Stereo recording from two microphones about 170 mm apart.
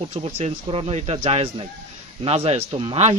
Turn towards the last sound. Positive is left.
turn(degrees=-35)  # may be behind; listen again after turning